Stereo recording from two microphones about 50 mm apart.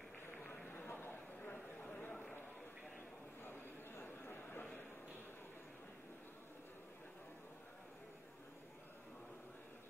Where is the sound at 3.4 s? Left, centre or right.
Left.